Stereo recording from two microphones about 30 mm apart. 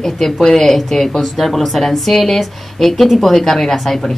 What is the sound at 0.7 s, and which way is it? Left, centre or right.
A woman's voice, centre.